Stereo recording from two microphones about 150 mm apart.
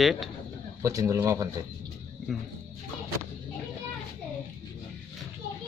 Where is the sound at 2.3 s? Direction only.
Centre (ahead or behind).